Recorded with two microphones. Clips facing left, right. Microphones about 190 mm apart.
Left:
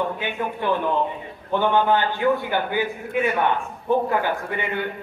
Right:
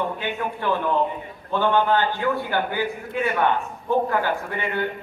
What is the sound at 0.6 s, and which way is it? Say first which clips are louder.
A man's voice: even; 15° left (ahead or behind).